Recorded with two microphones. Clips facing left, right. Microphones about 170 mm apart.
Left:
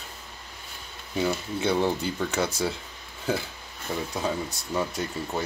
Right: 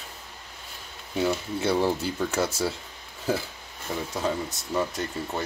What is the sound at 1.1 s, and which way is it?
Speech, 5° right (ahead or behind).